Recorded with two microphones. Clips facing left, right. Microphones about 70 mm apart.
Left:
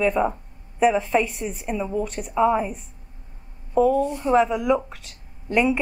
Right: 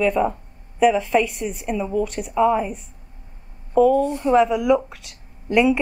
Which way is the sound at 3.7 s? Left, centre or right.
Centre.